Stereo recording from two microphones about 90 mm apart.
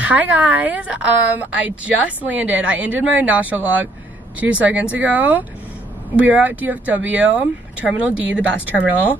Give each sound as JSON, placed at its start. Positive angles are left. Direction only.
{"t": 0.0, "sound": "speech", "side_deg": -15}